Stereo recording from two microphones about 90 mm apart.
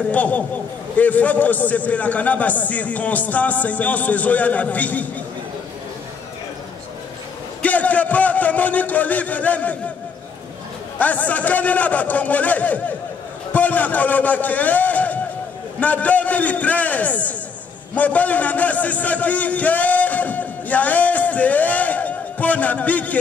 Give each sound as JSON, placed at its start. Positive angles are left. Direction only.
{"t": 0.1, "sound": "a man's voice", "side_deg": 15}
{"t": 7.6, "sound": "a man's voice", "side_deg": 15}
{"t": 11.0, "sound": "a man's voice", "side_deg": 15}